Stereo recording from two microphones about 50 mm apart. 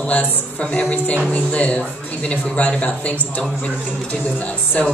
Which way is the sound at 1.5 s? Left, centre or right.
Left.